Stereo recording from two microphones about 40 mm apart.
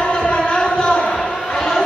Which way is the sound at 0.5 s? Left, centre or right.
Centre.